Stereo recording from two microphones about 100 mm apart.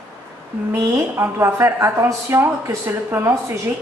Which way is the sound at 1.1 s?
25° right (ahead or behind).